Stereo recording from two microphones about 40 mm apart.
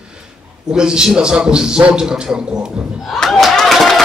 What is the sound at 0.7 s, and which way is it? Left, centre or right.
Speech, right.